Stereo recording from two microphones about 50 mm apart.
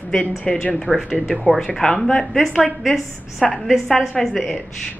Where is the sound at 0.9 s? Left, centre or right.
Right.